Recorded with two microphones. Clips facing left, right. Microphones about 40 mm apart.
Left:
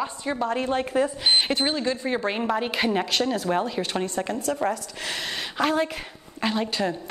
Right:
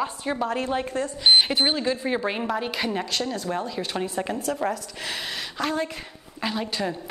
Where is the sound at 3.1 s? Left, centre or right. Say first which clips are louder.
Left 4 dB; centre.